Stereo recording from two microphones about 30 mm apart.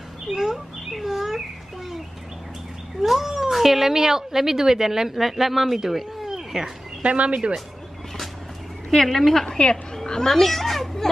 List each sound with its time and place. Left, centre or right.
0.3 s speech: centre
0.8 s a sound: centre
3.3 s cat: centre
3.5 s a woman's voice: centre
6.2 s a sound: centre
7.0 s speech: right
8.9 s a woman's voice: centre
9.5 s a woman's voice: left
10.0 s speech: centre